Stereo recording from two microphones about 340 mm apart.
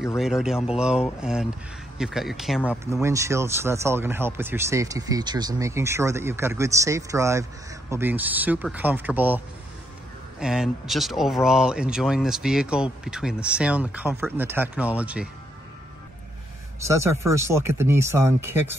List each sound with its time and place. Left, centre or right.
0.0 s speech: centre
10.4 s speech: centre
16.8 s speech: centre